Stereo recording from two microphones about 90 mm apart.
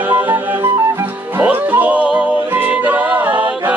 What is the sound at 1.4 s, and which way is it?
Music, 20° right (ahead or behind).